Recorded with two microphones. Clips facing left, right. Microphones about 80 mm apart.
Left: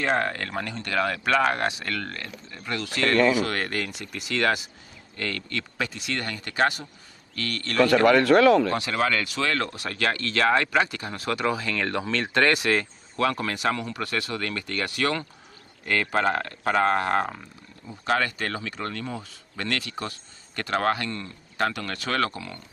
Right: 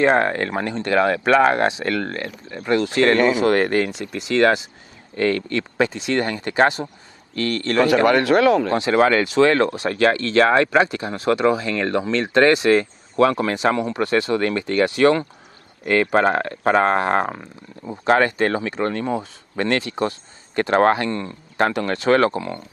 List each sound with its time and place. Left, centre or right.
0.0 s speech: right
7.8 s speech: centre
8.6 s speech: right